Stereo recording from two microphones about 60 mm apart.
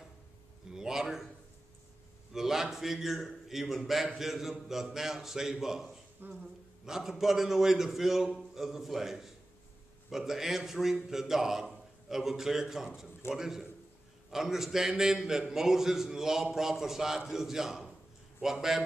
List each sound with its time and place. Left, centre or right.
0.7 s a sound: centre
2.3 s a man's voice: centre
6.2 s speech: right
6.9 s a man's voice: centre